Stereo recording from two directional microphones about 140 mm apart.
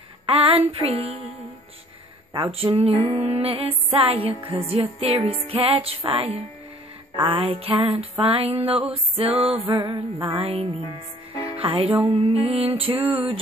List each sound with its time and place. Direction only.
0.3 s a sound: 40° right (ahead or behind)
2.5 s music: 45° right (ahead or behind)
2.9 s female singing: 20° left (ahead or behind)
3.2 s music: 40° right (ahead or behind)
10.3 s music: 40° right (ahead or behind)
12.1 s music: 50° right (ahead or behind)